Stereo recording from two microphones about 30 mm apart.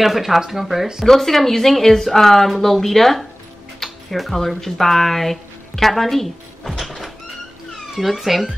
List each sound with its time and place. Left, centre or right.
0.0 s speech: centre
1.0 s a woman's voice: centre
3.8 s music: centre
4.6 s a woman's voice: centre
6.8 s a sound: centre
7.9 s speech: centre